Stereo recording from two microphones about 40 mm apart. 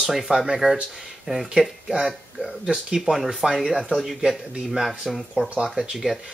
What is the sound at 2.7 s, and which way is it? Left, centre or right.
Speech, centre.